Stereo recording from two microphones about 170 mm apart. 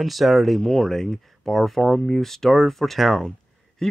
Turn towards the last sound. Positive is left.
turn(degrees=5)  # may be behind; listen again after turning